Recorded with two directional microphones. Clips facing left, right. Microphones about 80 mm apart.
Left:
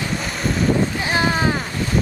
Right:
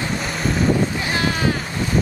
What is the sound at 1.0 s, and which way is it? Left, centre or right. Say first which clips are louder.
Boat: left 2 dB; left.